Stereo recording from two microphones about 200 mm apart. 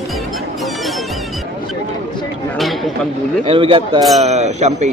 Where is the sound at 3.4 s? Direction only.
25° right (ahead or behind).